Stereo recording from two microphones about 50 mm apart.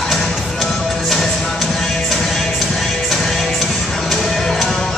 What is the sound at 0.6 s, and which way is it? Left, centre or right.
Music, centre.